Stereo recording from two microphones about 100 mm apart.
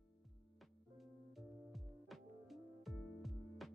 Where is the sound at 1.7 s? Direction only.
Centre (ahead or behind).